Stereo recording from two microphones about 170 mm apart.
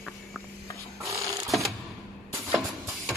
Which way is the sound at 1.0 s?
20° right (ahead or behind).